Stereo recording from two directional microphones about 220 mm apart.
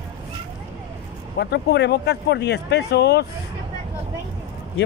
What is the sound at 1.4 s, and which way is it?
Speech, 50° left (ahead or behind).